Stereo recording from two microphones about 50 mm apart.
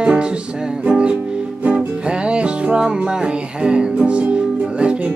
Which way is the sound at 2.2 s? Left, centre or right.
Right.